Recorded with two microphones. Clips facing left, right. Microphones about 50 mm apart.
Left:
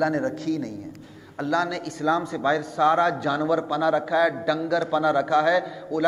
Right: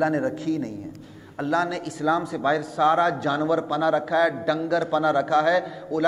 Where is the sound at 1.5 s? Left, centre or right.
Centre.